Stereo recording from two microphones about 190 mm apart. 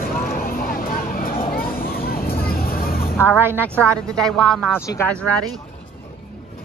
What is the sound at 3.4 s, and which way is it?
Speech, 10° right (ahead or behind).